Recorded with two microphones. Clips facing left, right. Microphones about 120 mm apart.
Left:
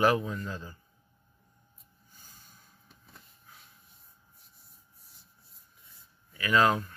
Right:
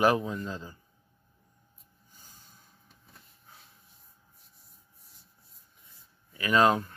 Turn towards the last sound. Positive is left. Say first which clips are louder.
# right 2 dB
turn(degrees=-25)  # may be behind; listen again after turning